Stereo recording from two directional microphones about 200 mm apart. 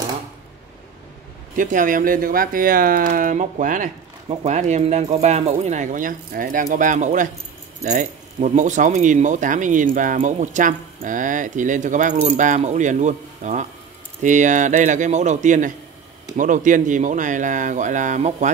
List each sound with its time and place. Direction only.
1.6 s speech: 40° right (ahead or behind)